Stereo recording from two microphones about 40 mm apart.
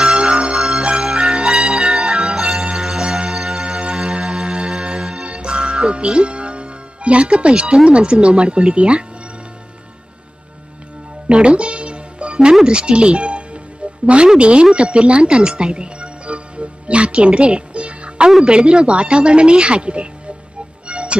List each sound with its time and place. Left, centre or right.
0.0 s music: centre
7.7 s speech: right
11.2 s music: right
12.6 s speech: right
20.8 s music: right